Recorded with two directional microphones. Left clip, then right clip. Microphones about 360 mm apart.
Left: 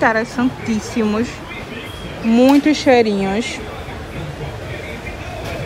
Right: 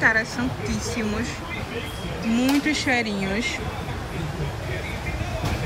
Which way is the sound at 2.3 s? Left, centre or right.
Centre.